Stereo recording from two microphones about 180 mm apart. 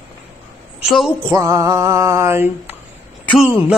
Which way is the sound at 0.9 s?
Centre (ahead or behind).